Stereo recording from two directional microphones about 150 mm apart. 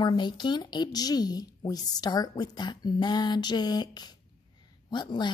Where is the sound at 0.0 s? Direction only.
30° left (ahead or behind).